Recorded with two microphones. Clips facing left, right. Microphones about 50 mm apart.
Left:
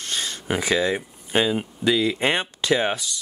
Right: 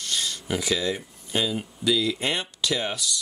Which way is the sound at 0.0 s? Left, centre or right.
Left.